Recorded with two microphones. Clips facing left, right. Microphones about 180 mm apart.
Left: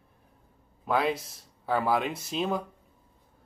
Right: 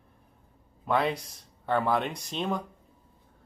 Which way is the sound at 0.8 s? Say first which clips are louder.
Even; 5° left (ahead or behind).